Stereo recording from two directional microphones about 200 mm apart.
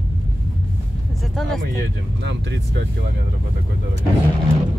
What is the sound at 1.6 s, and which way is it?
Speech, 60° right (ahead or behind).